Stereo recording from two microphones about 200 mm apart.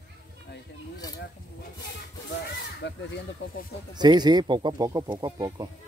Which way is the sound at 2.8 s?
60° left (ahead or behind).